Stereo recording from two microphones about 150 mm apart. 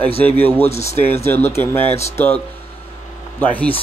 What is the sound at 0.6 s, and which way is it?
Speech, 45° left (ahead or behind).